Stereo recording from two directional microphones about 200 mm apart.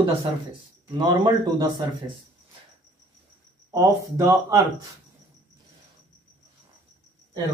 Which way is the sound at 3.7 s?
15° right (ahead or behind).